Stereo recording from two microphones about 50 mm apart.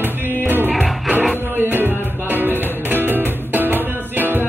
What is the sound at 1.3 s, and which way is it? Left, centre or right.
Music, right.